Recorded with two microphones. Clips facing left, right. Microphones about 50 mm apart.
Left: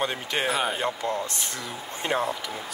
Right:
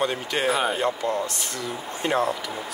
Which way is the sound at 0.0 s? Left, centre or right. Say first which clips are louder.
Right 2 dB; left.